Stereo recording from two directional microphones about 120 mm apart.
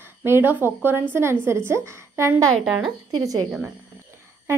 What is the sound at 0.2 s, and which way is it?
Speech, 20° right (ahead or behind).